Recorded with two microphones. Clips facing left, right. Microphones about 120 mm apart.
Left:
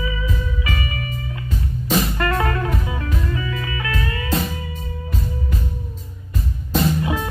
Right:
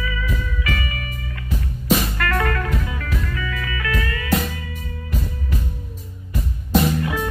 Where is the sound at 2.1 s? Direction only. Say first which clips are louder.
Left 1 dB; 25° left (ahead or behind).